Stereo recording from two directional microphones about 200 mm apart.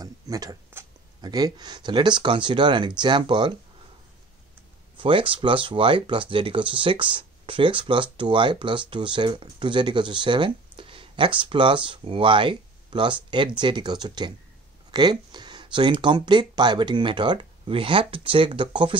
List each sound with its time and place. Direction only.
0.0 s speech: 20° right (ahead or behind)
4.9 s speech: 25° right (ahead or behind)